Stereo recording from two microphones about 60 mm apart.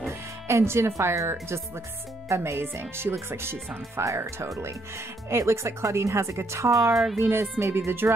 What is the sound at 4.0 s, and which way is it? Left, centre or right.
Speech, right.